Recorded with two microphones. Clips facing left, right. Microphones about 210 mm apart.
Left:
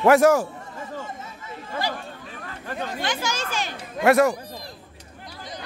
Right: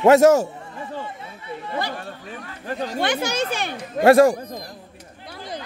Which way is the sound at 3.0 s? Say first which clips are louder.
Right 8 dB; 60° right (ahead or behind).